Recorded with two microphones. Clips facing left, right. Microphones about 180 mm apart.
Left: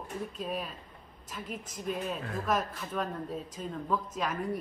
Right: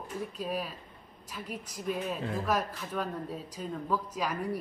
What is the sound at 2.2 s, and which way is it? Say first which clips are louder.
Speech: right 3 dB; 25° right (ahead or behind).